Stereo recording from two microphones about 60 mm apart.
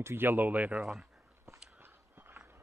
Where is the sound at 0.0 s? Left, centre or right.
Right.